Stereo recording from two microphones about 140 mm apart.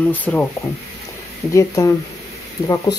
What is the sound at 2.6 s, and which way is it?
Speech, 25° left (ahead or behind).